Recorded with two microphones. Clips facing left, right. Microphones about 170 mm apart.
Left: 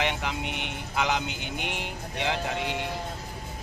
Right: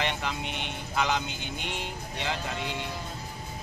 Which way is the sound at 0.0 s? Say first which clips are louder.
Left 2 dB; 15° left (ahead or behind).